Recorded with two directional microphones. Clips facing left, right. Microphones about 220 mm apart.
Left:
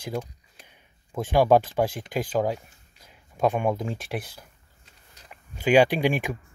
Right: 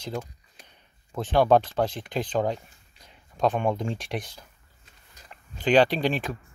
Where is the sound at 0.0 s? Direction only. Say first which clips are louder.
Left 2 dB; 10° left (ahead or behind).